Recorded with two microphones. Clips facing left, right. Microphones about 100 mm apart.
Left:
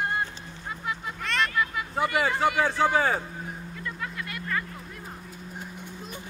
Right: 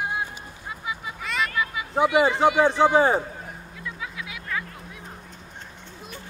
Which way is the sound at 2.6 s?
20° right (ahead or behind).